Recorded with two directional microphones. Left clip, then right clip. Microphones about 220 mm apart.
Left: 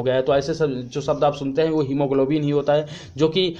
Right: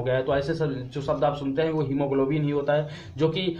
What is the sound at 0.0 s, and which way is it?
Speech, 45° left (ahead or behind).